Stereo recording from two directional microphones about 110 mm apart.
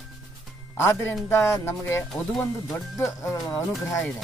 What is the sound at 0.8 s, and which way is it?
Speech, 25° left (ahead or behind).